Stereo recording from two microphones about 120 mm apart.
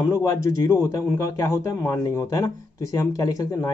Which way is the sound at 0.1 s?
25° left (ahead or behind).